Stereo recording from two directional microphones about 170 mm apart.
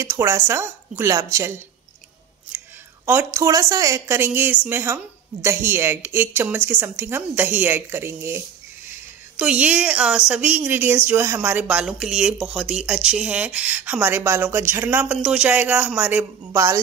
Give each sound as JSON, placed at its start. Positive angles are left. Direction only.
{"t": 0.0, "sound": "a woman's voice", "side_deg": -15}
{"t": 2.5, "sound": "a sound", "side_deg": -10}
{"t": 3.1, "sound": "a woman's voice", "side_deg": -15}
{"t": 9.4, "sound": "a woman's voice", "side_deg": -5}